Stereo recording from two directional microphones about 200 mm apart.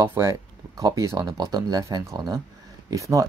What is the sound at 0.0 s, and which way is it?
Speech, 15° right (ahead or behind).